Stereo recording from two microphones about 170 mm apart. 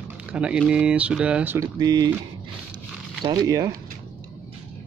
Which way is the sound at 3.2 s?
20° right (ahead or behind).